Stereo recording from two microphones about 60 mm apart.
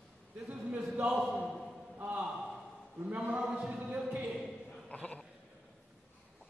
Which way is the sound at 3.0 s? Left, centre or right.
Right.